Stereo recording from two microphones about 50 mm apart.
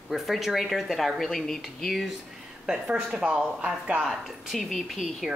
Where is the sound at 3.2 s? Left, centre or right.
Right.